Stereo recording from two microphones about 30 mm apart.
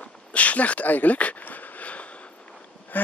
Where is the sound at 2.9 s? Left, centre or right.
Left.